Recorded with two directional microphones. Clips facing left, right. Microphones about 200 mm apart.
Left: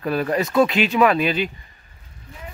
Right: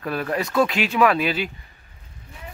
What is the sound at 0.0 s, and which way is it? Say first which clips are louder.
Speech: left 4 dB; centre (ahead or behind).